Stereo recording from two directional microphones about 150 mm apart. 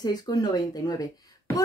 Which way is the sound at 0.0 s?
25° left (ahead or behind).